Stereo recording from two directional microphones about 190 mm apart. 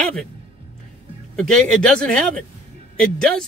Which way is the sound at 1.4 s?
5° left (ahead or behind).